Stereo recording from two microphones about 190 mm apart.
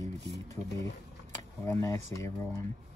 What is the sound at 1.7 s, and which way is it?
Speech, 15° left (ahead or behind).